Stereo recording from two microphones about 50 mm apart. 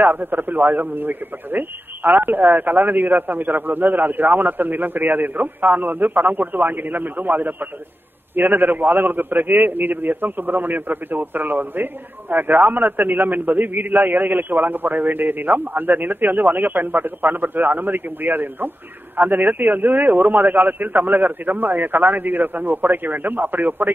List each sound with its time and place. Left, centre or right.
0.0 s a man's voice: right